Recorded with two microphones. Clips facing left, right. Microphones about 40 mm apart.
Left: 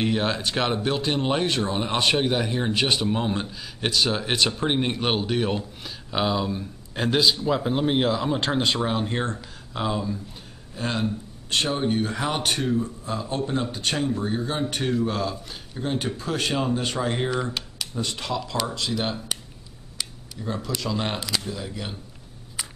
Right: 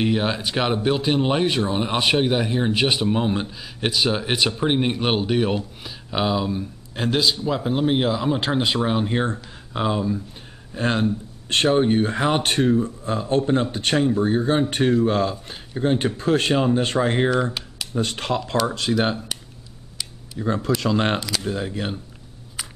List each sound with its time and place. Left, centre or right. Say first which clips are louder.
0.0 s speech: right 2 dB; centre
10.7 s speech: right 5 dB; right
20.3 s speech: right 7 dB; right
22.6 s a sound: right 1 dB; centre